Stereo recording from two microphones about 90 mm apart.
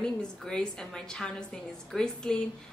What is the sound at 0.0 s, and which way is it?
A woman's voice, 10° left (ahead or behind).